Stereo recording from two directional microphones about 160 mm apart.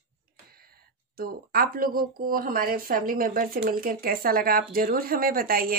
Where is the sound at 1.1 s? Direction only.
65° right (ahead or behind).